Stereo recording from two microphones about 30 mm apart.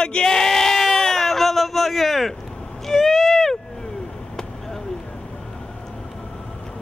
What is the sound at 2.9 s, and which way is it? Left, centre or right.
Owl, centre.